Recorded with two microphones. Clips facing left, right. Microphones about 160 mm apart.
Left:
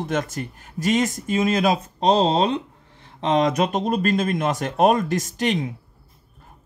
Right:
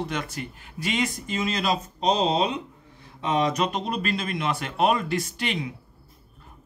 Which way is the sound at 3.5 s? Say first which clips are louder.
Left 5 dB; 45° left (ahead or behind).